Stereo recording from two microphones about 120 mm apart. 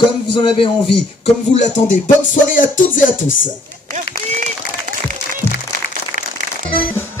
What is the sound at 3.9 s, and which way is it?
Run, 90° right.